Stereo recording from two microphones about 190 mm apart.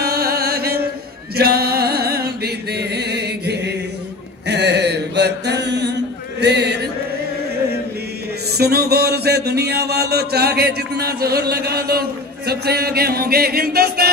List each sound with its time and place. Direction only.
0.0 s chant: 55° right (ahead or behind)
4.5 s mantra: 60° right (ahead or behind)
6.4 s chant: 65° right (ahead or behind)
8.5 s speech: 55° right (ahead or behind)